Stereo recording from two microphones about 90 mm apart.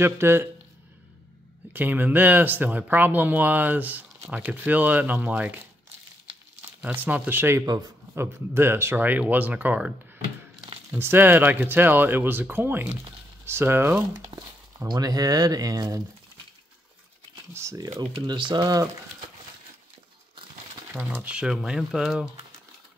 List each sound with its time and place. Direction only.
0.0 s speech: 25° right (ahead or behind)
1.7 s speech: 20° right (ahead or behind)
6.8 s speech: 20° right (ahead or behind)
7.6 s speech: 45° right (ahead or behind)
8.1 s speech: 25° right (ahead or behind)
11.0 s speech: 25° right (ahead or behind)
14.9 s speech: 45° right (ahead or behind)
17.6 s speech: 35° right (ahead or behind); by 18.7 s 60° right (ahead or behind)
20.9 s speech: 20° right (ahead or behind); by 22.3 s 5° right (ahead or behind)